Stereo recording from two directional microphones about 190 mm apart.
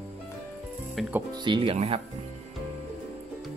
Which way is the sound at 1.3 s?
25° right (ahead or behind).